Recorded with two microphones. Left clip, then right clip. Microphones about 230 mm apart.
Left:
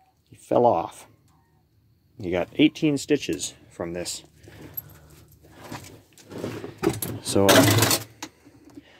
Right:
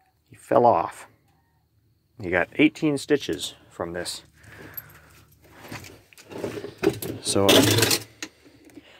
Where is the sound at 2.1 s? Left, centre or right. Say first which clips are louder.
Right 2 dB; centre.